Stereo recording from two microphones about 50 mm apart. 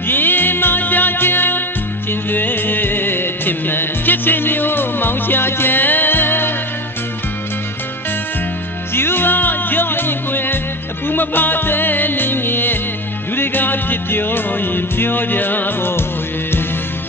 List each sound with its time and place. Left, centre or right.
0.1 s music: left
8.9 s music: left